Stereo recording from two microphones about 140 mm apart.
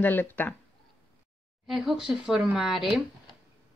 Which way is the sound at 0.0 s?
15° left (ahead or behind).